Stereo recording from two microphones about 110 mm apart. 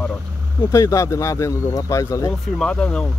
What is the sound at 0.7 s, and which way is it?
Speech, 30° left (ahead or behind).